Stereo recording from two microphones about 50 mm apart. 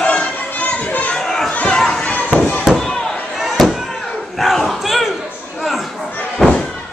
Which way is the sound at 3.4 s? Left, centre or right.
Centre.